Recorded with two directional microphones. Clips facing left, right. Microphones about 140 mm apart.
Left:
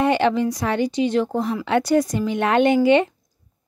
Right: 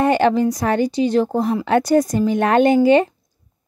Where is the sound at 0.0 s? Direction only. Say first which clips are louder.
Right 3 dB; 45° right (ahead or behind).